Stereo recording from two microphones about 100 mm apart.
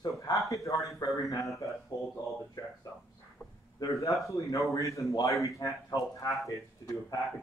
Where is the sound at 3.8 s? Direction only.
30° left (ahead or behind).